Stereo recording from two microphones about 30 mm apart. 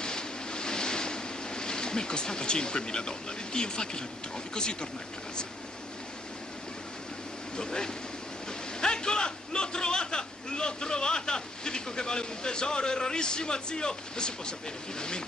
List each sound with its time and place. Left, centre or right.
0.0 s vehicle: left
7.5 s a man's voice: left